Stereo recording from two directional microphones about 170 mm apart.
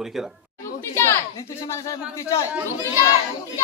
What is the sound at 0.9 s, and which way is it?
A woman's voice, 15° left (ahead or behind).